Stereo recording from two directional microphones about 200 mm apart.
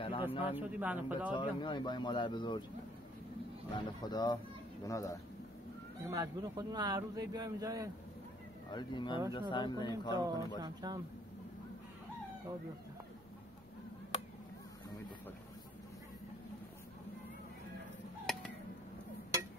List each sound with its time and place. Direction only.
0.3 s speech: 25° left (ahead or behind)
0.6 s speech: 10° right (ahead or behind)
1.3 s speech: 25° left (ahead or behind)
3.7 s speech: 20° left (ahead or behind)
6.0 s speech: 15° right (ahead or behind)
8.7 s speech: 25° left (ahead or behind)
10.1 s speech: 20° right (ahead or behind)